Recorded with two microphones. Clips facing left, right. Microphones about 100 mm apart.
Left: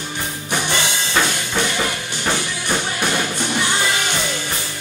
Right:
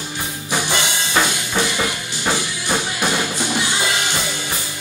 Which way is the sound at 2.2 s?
15° right (ahead or behind).